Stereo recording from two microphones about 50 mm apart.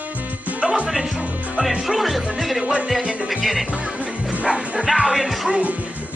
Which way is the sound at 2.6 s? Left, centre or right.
Right.